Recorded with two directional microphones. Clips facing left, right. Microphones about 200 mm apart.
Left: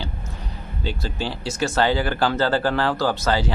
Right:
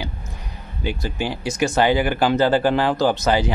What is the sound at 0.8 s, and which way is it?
Speech, 15° right (ahead or behind).